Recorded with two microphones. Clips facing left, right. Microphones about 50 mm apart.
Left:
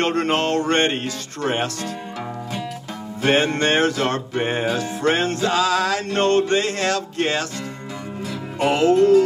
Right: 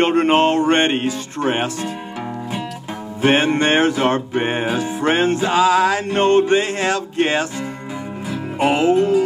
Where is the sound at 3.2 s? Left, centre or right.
Centre.